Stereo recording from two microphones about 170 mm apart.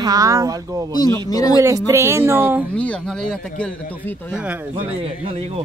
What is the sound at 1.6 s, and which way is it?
Speech, 15° right (ahead or behind).